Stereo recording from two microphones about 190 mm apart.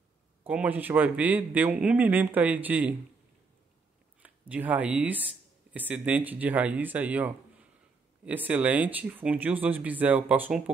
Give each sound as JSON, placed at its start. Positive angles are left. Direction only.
{"t": 0.4, "sound": "a man's voice", "side_deg": -10}
{"t": 4.2, "sound": "a man's voice", "side_deg": -10}